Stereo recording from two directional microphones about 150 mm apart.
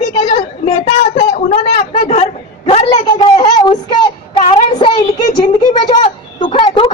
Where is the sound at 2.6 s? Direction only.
35° left (ahead or behind).